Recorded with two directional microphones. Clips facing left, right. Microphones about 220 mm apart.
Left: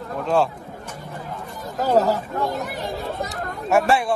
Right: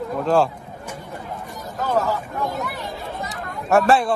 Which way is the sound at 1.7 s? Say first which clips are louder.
Left 4 dB; 40° left (ahead or behind).